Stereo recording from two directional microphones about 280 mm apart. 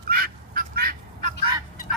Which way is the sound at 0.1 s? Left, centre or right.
Right.